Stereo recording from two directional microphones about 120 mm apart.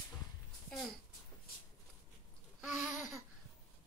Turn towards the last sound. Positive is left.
turn(degrees=-5)  # may be behind; listen again after turning